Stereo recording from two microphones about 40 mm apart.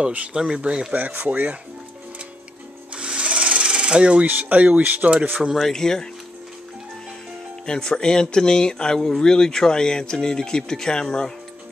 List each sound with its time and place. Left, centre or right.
0.3 s speech: centre
1.2 s speech: right
2.9 s filing: right
4.3 s speech: right
5.6 s speech: centre
7.6 s speech: centre